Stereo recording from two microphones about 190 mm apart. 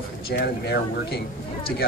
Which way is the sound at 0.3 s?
60° left (ahead or behind).